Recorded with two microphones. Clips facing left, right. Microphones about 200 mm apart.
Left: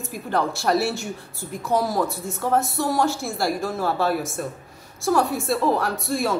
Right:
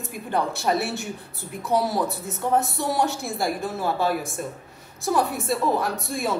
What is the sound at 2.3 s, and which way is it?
Speech, 20° right (ahead or behind).